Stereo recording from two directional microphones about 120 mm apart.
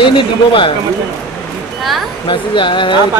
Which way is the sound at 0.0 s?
45° left (ahead or behind).